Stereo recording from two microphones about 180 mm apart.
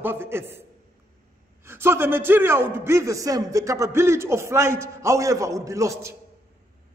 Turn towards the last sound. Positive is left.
turn(degrees=-15)  # may be behind; listen again after turning